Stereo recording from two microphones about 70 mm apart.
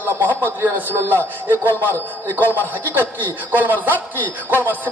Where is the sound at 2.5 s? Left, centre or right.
Right.